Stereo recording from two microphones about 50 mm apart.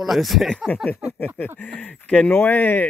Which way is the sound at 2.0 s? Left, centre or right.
Left.